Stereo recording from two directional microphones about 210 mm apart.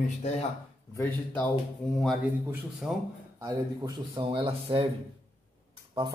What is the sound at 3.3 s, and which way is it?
Speech, 15° right (ahead or behind).